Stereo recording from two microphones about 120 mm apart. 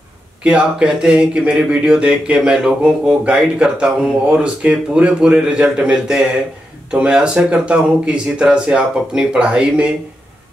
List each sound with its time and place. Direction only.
0.4 s speech: 10° right (ahead or behind)